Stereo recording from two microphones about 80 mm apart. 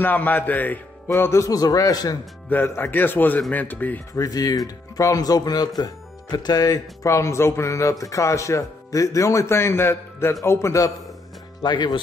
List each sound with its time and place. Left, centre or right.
0.0 s a man's voice: left
1.1 s speech: left
2.5 s a man's voice: left
4.1 s speech: left
11.6 s speech: left